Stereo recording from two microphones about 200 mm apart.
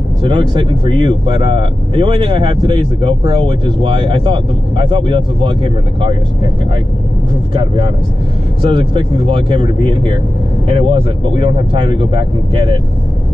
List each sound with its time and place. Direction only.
0.2 s speech: 25° right (ahead or behind)
7.5 s speech: 25° right (ahead or behind)